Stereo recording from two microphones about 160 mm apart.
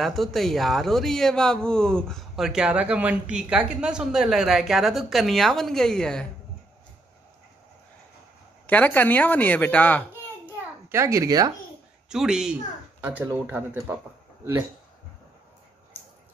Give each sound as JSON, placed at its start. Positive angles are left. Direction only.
{"t": 0.0, "sound": "speech", "side_deg": 0}
{"t": 8.6, "sound": "speech", "side_deg": 10}
{"t": 10.4, "sound": "babbling", "side_deg": -15}
{"t": 12.1, "sound": "speech", "side_deg": -5}